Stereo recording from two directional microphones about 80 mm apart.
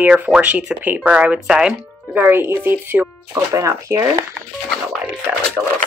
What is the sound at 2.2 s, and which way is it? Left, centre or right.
Speech, right.